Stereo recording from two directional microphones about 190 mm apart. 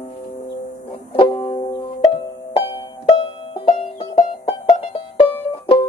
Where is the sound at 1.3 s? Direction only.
20° left (ahead or behind).